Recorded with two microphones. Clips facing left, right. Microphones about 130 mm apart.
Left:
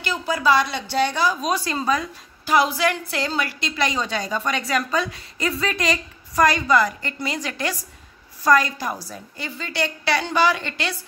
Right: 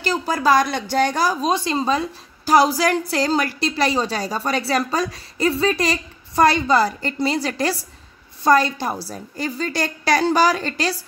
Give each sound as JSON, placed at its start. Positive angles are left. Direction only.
{"t": 0.0, "sound": "speech", "side_deg": -40}
{"t": 1.5, "sound": "a woman's voice", "side_deg": -25}